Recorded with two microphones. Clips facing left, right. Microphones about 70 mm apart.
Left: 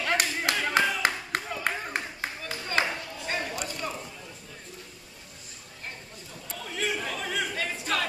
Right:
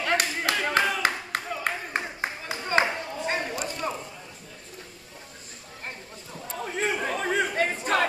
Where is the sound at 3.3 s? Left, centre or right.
Centre.